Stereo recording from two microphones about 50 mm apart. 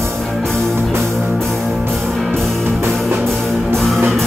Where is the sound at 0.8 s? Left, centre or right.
Right.